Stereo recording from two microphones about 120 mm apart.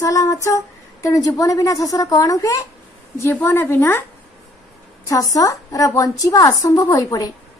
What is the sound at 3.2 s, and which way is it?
Speech, 20° left (ahead or behind).